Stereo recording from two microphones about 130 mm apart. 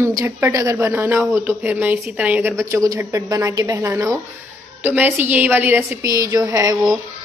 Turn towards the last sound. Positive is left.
turn(degrees=-25)  # may be behind; listen again after turning